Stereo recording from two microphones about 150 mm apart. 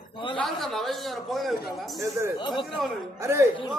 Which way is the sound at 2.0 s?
20° right (ahead or behind).